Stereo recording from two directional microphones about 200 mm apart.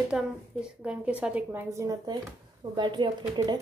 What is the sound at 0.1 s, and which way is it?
A woman's voice, 5° right (ahead or behind).